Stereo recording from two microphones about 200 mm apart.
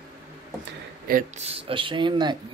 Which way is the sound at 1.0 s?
45° right (ahead or behind).